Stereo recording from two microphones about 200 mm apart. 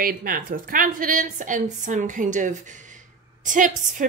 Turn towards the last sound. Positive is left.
turn(degrees=-40)  # may be behind; listen again after turning